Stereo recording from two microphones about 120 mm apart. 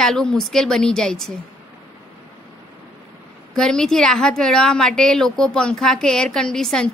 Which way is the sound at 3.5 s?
5° left (ahead or behind).